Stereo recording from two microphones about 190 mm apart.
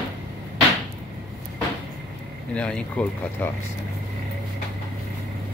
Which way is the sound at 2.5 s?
5° left (ahead or behind).